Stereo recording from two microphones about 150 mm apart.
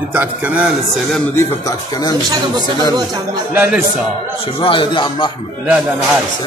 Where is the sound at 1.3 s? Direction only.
25° left (ahead or behind).